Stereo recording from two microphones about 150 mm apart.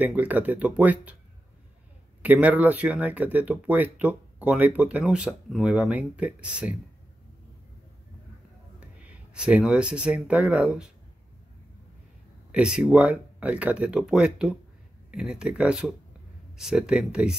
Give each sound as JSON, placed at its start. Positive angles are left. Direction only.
{"t": 0.0, "sound": "speech", "side_deg": -10}
{"t": 2.2, "sound": "speech", "side_deg": -10}
{"t": 8.7, "sound": "speech", "side_deg": -10}
{"t": 12.5, "sound": "speech", "side_deg": -5}